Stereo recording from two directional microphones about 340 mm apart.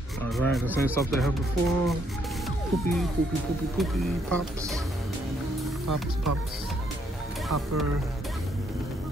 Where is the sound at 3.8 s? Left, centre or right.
Centre.